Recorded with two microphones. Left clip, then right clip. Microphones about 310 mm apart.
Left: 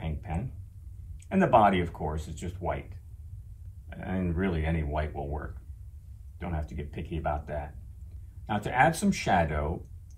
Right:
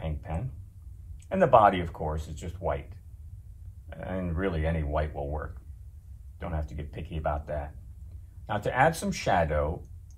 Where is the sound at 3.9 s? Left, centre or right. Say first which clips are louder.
Even; centre.